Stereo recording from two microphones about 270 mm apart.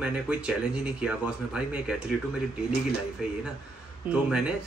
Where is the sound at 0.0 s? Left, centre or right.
Centre.